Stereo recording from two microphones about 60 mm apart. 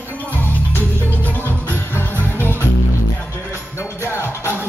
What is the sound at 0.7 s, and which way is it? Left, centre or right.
Music, left.